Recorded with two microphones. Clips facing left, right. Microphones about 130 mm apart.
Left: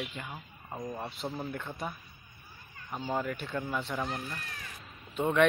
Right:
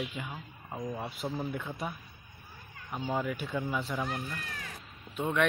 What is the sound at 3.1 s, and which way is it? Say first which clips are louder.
Speech: right 1 dB; 5° right (ahead or behind).